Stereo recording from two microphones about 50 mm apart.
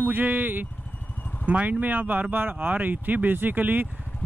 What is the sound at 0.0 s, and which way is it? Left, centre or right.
Speech, right.